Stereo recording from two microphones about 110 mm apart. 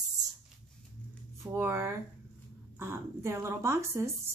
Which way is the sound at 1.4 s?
25° right (ahead or behind).